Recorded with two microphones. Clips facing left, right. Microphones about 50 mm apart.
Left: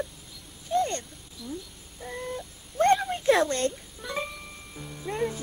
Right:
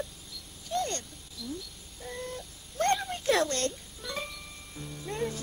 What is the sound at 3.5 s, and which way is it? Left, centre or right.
Speech, left.